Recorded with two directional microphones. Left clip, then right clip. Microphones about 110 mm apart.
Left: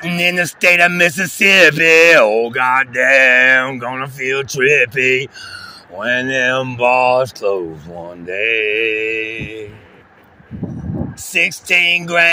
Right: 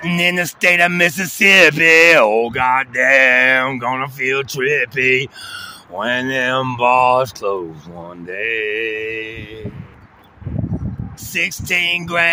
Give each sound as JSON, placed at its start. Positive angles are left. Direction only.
{"t": 0.2, "sound": "speech", "side_deg": -20}
{"t": 2.3, "sound": "speech", "side_deg": -35}
{"t": 2.6, "sound": "speech", "side_deg": -20}
{"t": 4.6, "sound": "speech", "side_deg": -10}
{"t": 5.1, "sound": "speech", "side_deg": -45}
{"t": 5.9, "sound": "speech", "side_deg": -25}
{"t": 11.3, "sound": "speech", "side_deg": -15}